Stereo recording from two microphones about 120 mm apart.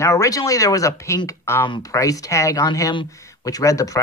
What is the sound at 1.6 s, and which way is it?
Speech, 40° left (ahead or behind).